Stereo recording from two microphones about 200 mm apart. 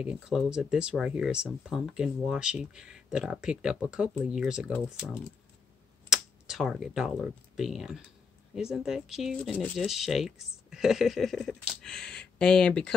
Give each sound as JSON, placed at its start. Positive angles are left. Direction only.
{"t": 0.0, "sound": "speech", "side_deg": -5}
{"t": 5.0, "sound": "speech", "side_deg": 5}